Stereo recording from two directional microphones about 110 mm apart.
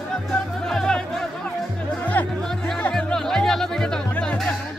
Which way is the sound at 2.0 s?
15° left (ahead or behind).